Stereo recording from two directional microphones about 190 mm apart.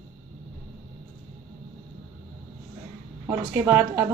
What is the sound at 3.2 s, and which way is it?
Speech, 10° right (ahead or behind).